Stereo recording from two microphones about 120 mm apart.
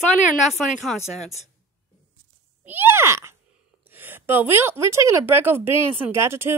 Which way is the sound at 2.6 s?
15° right (ahead or behind).